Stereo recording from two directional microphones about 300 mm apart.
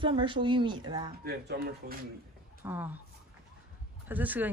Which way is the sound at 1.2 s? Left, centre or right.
Right.